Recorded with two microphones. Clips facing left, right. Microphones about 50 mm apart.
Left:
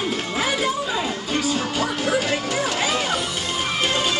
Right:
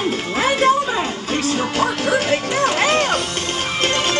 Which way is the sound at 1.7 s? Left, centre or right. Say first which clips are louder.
Right 5 dB; right.